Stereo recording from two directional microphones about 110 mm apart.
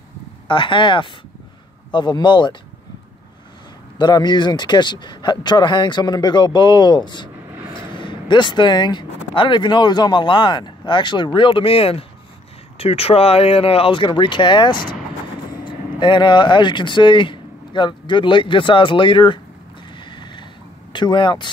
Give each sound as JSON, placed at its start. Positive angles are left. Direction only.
{"t": 0.5, "sound": "speech", "side_deg": 50}
{"t": 4.0, "sound": "speech", "side_deg": 40}
{"t": 20.0, "sound": "boat", "side_deg": 45}
{"t": 20.9, "sound": "speech", "side_deg": 45}